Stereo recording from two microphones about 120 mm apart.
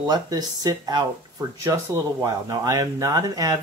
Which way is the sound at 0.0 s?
35° right (ahead or behind).